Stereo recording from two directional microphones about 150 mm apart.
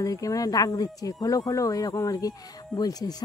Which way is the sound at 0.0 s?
25° left (ahead or behind).